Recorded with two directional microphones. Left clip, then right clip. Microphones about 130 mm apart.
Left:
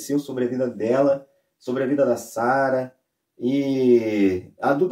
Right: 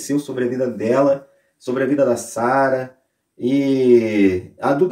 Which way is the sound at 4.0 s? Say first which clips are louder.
Right 5 dB; 20° left (ahead or behind).